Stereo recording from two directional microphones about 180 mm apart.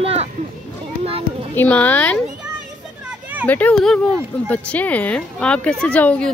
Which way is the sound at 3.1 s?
10° right (ahead or behind).